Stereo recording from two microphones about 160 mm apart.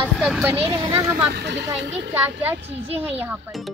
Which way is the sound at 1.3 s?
90° right.